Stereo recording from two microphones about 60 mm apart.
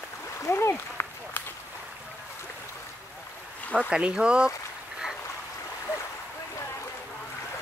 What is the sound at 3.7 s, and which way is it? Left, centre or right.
Speech, centre.